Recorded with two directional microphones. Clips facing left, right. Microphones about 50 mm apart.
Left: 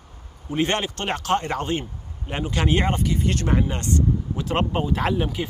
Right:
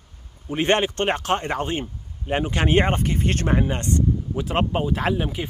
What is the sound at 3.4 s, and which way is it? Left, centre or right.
Speech, centre.